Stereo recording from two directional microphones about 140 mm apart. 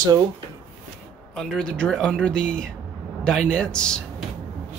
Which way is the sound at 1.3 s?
5° left (ahead or behind).